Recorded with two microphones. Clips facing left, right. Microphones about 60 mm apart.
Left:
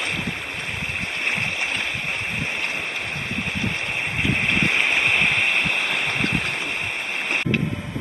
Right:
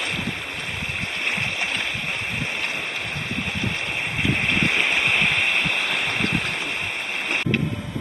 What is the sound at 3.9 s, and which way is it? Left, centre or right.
Boat, left.